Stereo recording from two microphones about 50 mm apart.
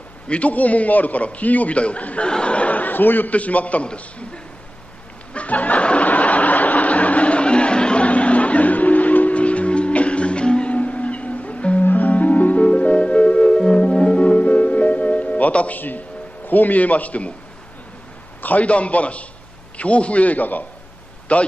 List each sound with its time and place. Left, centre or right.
0.3 s a man's voice: left
5.3 s a sound: left
11.8 s music: left
16.4 s a man's voice: left
18.4 s a man's voice: left